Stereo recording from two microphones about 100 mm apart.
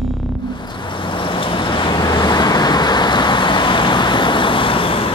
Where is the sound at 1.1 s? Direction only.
60° left (ahead or behind).